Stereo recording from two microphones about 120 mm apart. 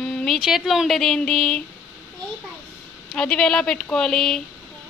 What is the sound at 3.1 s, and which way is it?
Speech, 5° left (ahead or behind).